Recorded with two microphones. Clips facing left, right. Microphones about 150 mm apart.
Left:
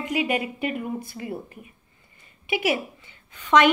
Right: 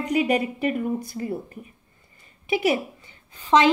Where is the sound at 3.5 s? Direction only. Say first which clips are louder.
Even; 25° right (ahead or behind).